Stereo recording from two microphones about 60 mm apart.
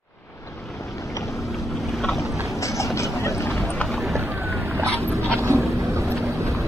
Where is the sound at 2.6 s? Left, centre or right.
Left.